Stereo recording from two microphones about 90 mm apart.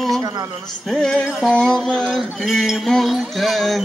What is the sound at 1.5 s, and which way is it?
Speech, 10° left (ahead or behind).